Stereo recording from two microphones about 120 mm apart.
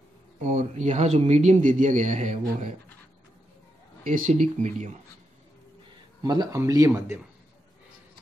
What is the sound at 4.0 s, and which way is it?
Speech, 90° right.